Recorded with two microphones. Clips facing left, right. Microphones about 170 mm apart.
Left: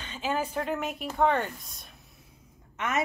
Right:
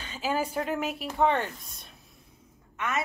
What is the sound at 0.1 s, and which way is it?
Speech, 10° right (ahead or behind).